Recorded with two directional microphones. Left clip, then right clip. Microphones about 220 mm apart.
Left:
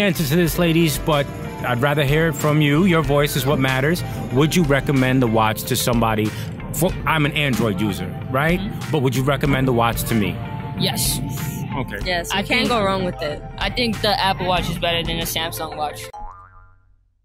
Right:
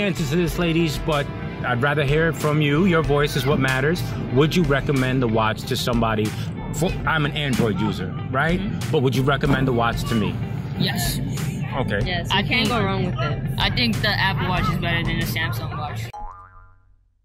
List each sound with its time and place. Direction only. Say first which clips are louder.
0.0 s speech: left 4 dB; 25° left (ahead or behind)
10.8 s speech: left 2 dB; 50° left (ahead or behind)
12.4 s speech: left 3 dB; 55° left (ahead or behind)
13.6 s speech: right 1 dB; 30° left (ahead or behind)
14.0 s speech: left 6 dB; 50° left (ahead or behind)